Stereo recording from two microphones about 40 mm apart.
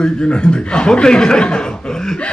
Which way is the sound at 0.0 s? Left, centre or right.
Left.